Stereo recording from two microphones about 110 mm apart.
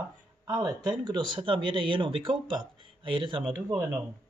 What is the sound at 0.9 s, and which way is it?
Speech, 45° right (ahead or behind).